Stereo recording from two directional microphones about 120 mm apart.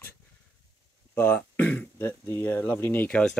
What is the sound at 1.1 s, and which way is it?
Speech, 15° left (ahead or behind).